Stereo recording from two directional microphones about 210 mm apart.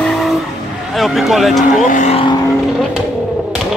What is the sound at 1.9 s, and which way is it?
Speech, 30° left (ahead or behind).